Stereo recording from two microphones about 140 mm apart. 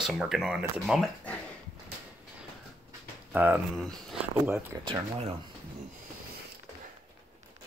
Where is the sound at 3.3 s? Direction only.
10° right (ahead or behind).